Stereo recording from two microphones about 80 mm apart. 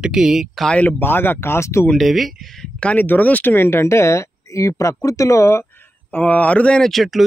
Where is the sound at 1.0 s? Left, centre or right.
Left.